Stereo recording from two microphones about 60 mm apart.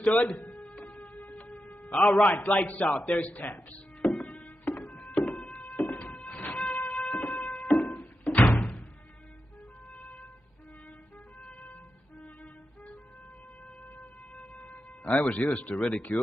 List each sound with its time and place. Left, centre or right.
0.4 s music: left
0.7 s music: centre
4.1 s music: centre
5.8 s a sound: left
8.5 s music: left
14.3 s a sound: left